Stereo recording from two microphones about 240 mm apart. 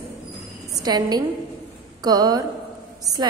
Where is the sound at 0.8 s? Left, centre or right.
Centre.